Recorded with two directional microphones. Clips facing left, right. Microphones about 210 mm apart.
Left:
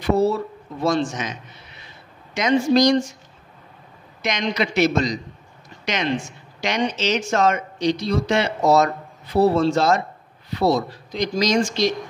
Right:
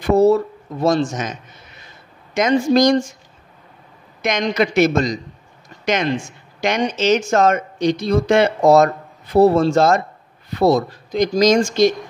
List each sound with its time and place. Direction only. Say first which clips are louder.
0.0 s a man's voice: right 6 dB; 45° right (ahead or behind)
4.2 s speech: right 5 dB; 50° right (ahead or behind)
6.6 s speech: right 4 dB; 50° right (ahead or behind)